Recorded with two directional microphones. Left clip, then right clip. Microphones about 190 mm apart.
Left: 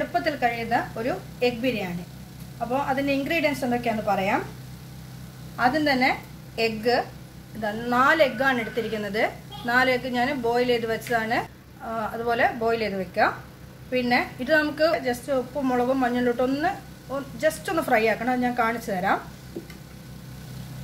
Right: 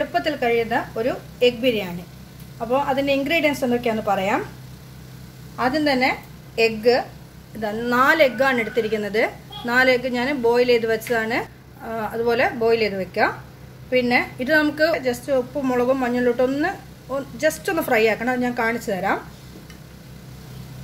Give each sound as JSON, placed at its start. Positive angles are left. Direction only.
{"t": 0.1, "sound": "a woman's voice", "side_deg": -40}
{"t": 5.6, "sound": "a woman's voice", "side_deg": -25}